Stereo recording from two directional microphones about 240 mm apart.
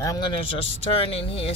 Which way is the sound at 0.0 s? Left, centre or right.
Centre.